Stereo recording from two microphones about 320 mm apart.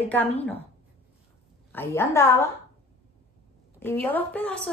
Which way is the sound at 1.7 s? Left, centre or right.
Centre.